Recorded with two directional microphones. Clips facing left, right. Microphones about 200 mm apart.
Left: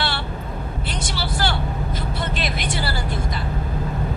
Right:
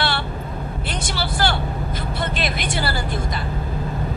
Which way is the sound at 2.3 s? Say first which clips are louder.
Right 1 dB; 55° right (ahead or behind).